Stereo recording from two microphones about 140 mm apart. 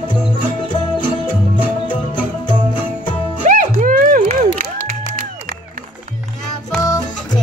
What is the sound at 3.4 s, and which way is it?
Music, 70° right (ahead or behind).